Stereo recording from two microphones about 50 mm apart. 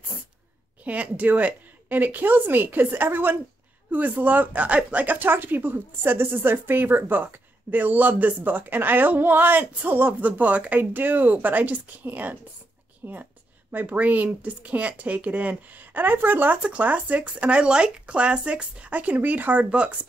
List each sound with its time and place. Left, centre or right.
0.8 s a woman's voice: right
5.2 s a woman's voice: right
16.6 s speech: right